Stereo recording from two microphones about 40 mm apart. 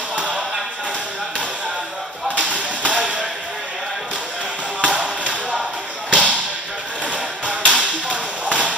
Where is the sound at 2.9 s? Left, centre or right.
Right.